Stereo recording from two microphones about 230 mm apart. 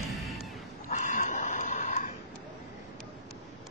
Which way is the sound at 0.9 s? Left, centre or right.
Left.